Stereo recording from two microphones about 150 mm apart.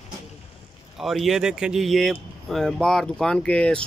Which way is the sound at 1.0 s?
Centre (ahead or behind).